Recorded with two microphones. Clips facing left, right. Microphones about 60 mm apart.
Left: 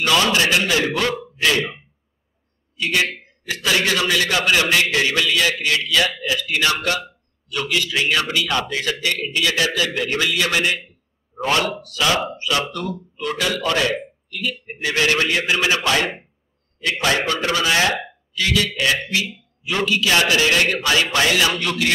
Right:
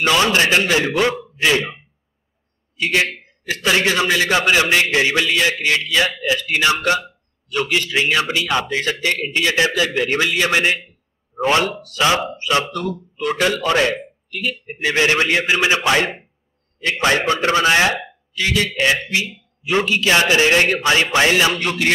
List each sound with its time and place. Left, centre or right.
0.0 s a man's voice: right
0.8 s a man's voice: centre
2.8 s a man's voice: right
11.7 s speech: right
12.1 s a man's voice: right